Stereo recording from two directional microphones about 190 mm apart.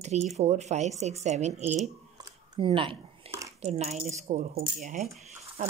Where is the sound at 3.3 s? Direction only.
30° right (ahead or behind).